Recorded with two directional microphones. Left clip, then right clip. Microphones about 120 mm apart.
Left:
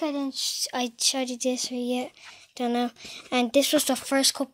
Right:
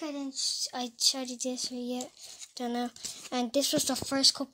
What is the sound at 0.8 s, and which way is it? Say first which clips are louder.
Speech: left 3 dB; 30° left (ahead or behind).